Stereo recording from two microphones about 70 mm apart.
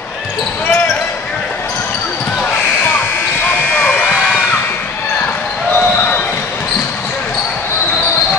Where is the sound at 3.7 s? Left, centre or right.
Left.